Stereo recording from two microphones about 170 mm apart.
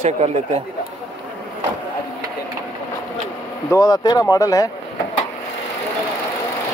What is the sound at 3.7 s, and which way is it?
Speech, 20° left (ahead or behind).